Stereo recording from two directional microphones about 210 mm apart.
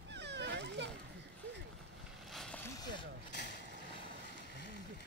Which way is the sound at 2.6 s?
20° left (ahead or behind).